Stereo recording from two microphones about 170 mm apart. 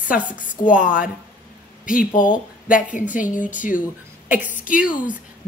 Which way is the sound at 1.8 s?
55° left (ahead or behind).